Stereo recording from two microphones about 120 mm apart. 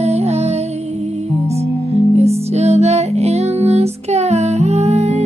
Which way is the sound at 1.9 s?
60° right (ahead or behind).